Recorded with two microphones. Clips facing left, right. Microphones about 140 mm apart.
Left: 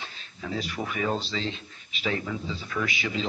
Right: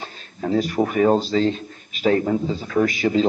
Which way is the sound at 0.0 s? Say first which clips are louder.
Right 10 dB; 45° right (ahead or behind).